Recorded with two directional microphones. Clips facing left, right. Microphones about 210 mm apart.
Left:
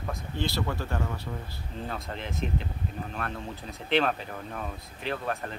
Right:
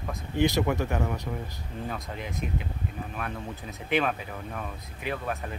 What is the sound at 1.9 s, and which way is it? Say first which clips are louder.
Speech: left 1 dB; 5° right (ahead or behind).